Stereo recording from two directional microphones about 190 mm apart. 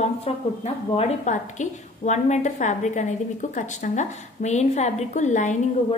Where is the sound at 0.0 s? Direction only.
35° left (ahead or behind).